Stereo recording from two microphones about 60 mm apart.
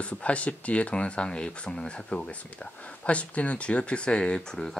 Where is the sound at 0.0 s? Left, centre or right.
Left.